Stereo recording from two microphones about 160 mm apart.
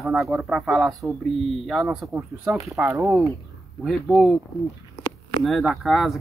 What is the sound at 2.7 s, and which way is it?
Speech, 15° right (ahead or behind).